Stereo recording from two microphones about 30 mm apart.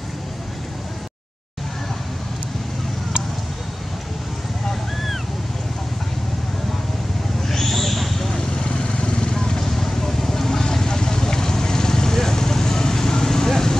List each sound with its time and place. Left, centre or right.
7.4 s a sound: centre
8.3 s vehicle: centre
9.3 s vehicle: centre